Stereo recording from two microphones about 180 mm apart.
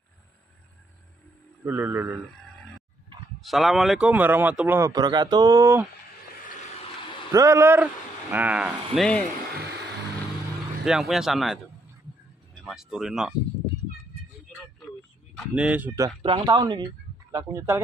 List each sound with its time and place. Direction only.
1.6 s a man's voice: 10° right (ahead or behind)
2.1 s a sound: 5° left (ahead or behind)
3.3 s a man's voice: centre (ahead or behind); by 5.9 s 15° right (ahead or behind)
7.3 s a man's voice: 15° right (ahead or behind); by 9.2 s centre (ahead or behind)
10.8 s speech: 5° right (ahead or behind)
14.9 s a sound: centre (ahead or behind)
16.2 s speech: 30° right (ahead or behind)